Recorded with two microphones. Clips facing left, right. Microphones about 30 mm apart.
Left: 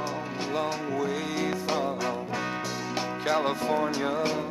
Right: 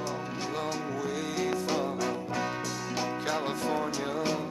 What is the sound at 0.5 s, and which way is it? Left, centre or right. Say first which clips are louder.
Music: left 5 dB; left.